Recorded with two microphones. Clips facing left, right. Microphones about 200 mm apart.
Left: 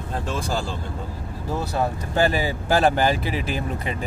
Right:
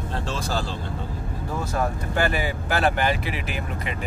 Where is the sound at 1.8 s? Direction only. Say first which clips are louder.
Left 3 dB; 30° left (ahead or behind).